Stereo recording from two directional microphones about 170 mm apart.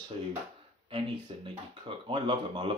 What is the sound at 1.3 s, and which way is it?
Speech, 30° right (ahead or behind).